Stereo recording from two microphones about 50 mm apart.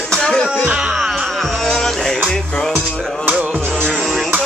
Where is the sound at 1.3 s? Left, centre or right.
Centre.